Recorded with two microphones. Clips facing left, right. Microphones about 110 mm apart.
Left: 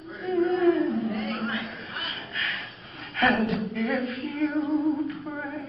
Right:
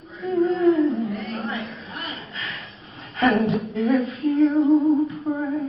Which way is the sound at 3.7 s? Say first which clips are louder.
Right 6 dB; 25° right (ahead or behind).